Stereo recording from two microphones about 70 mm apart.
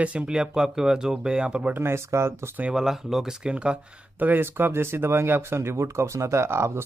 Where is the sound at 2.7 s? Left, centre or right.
Centre.